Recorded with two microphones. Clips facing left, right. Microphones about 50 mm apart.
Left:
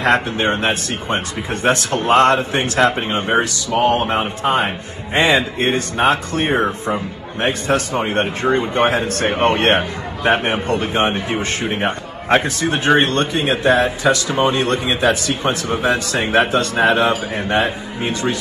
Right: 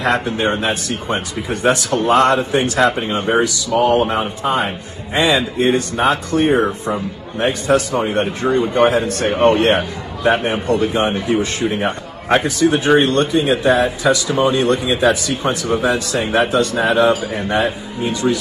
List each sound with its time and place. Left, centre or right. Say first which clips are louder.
0.0 s a man's voice: left 1 dB; left